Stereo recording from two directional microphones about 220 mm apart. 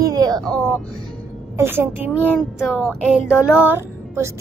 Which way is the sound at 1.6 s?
10° right (ahead or behind).